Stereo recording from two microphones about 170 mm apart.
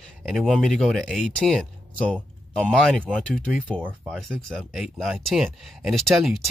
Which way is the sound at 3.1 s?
5° left (ahead or behind).